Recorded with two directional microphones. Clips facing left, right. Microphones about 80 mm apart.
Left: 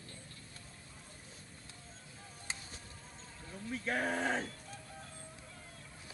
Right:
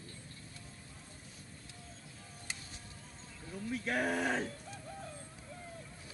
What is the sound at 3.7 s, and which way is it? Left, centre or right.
Male singing, left.